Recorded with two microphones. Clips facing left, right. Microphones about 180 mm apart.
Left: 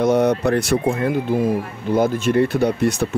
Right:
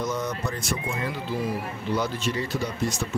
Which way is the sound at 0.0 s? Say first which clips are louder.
Left 12 dB; 65° left (ahead or behind).